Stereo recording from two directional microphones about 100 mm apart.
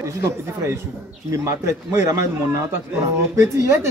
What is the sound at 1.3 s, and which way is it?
Speech, 30° right (ahead or behind).